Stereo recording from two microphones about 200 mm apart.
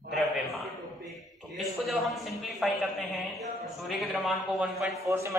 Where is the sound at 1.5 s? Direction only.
Centre (ahead or behind).